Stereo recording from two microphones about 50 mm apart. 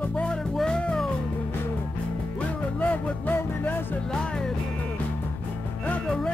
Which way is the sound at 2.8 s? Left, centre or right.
Left.